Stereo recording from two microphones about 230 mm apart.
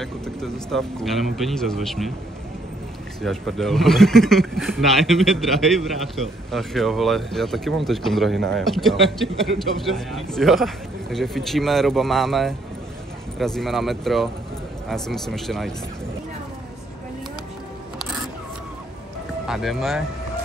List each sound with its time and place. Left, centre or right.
0.0 s a man's voice: centre
3.2 s a man's voice: centre
19.4 s speech: centre